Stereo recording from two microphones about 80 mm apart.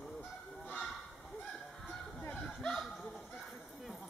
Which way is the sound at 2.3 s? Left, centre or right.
Centre.